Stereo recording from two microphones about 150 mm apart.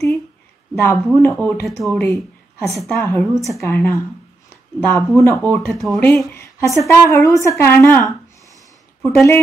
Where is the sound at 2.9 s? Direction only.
15° left (ahead or behind).